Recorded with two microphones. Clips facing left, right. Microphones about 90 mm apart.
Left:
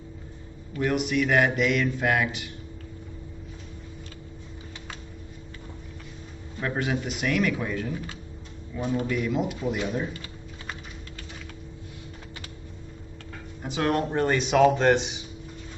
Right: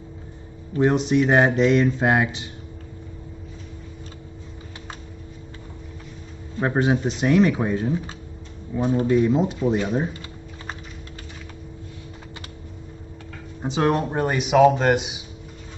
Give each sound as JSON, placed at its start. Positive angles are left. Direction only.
{"t": 0.7, "sound": "speech", "side_deg": -30}
{"t": 6.6, "sound": "speech", "side_deg": -30}
{"t": 13.6, "sound": "speech", "side_deg": -25}